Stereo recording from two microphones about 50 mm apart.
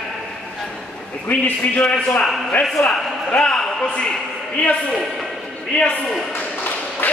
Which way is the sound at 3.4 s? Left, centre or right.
Centre.